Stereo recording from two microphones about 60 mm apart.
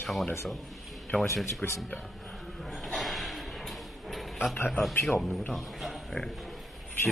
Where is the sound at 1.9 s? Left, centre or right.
Centre.